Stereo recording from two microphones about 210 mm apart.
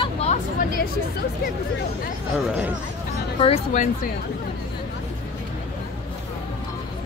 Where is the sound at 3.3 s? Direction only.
30° left (ahead or behind).